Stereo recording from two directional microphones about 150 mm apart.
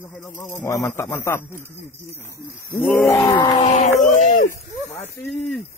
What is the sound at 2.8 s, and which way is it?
Speech, 5° left (ahead or behind).